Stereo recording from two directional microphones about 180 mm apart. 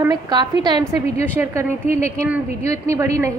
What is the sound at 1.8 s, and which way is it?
Speech, 40° left (ahead or behind).